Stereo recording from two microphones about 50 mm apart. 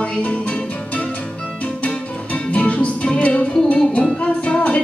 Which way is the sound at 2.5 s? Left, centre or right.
Left.